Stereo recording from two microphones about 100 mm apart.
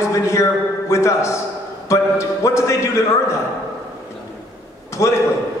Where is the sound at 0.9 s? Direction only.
30° left (ahead or behind).